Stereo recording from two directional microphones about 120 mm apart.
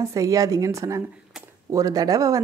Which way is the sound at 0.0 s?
25° right (ahead or behind).